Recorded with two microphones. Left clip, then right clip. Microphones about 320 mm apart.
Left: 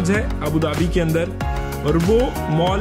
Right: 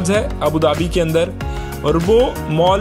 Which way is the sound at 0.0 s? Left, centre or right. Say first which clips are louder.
Right 5 dB; centre.